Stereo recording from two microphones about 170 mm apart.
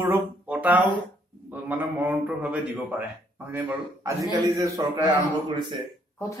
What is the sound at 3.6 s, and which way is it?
A man's voice, 20° right (ahead or behind).